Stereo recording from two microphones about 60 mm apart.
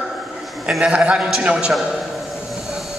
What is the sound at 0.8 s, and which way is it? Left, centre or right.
Speech, centre.